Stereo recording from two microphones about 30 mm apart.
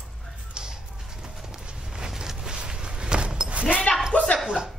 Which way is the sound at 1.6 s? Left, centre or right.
Right.